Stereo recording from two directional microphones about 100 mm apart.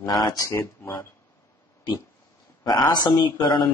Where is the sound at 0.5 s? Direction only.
30° left (ahead or behind).